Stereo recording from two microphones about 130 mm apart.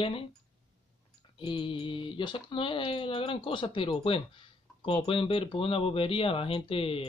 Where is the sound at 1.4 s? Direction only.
40° left (ahead or behind).